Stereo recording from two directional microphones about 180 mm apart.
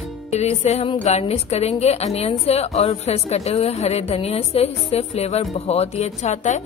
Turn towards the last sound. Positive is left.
turn(degrees=40)  # may be behind; listen again after turning